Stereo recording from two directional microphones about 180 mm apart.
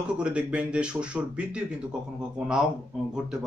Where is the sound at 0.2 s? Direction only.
5° right (ahead or behind).